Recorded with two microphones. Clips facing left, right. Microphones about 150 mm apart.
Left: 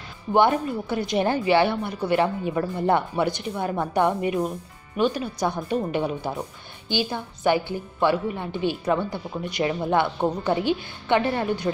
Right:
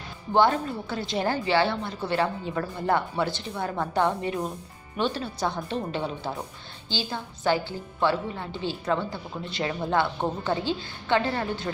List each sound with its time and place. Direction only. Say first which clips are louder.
0.3 s a woman's voice: left 2 dB; 20° left (ahead or behind)